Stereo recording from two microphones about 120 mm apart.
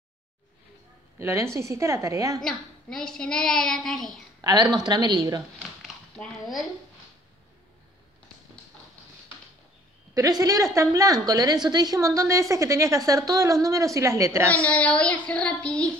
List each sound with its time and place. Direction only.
1.2 s a woman's voice: 25° right (ahead or behind)
2.4 s a child's voice: 5° left (ahead or behind)
4.4 s speech: 35° right (ahead or behind)
5.6 s a sound: 5° left (ahead or behind)
10.1 s a woman's voice: 30° right (ahead or behind)
14.7 s speech: 10° left (ahead or behind)